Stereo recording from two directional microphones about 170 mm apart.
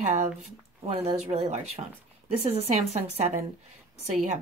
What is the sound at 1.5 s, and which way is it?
A woman's voice, 40° right (ahead or behind).